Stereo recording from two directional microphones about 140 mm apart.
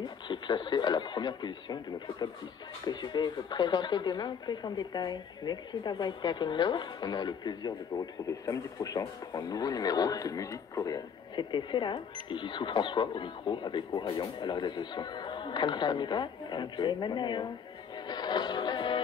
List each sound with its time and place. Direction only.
0.0 s speech: 35° left (ahead or behind)
18.0 s music: 30° left (ahead or behind)